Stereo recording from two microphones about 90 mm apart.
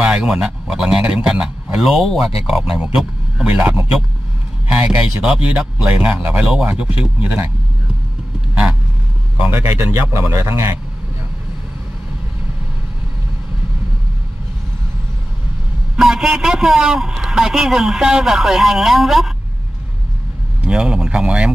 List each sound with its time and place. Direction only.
0.0 s a man's voice: 10° right (ahead or behind)
9.5 s a man's voice: 25° right (ahead or behind)
16.0 s a man's voice: 5° right (ahead or behind)
20.6 s a man's voice: 10° right (ahead or behind)